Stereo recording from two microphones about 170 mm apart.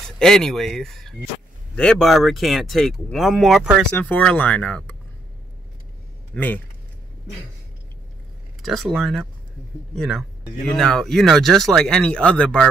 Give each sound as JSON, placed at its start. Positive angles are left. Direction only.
{"t": 0.2, "sound": "speech", "side_deg": 0}
{"t": 3.9, "sound": "speech", "side_deg": 10}
{"t": 6.3, "sound": "speech", "side_deg": 10}
{"t": 8.6, "sound": "speech", "side_deg": 0}